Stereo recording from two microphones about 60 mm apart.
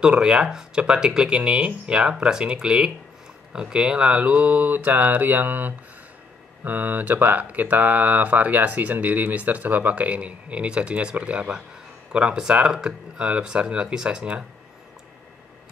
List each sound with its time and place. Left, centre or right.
0.0 s speech: centre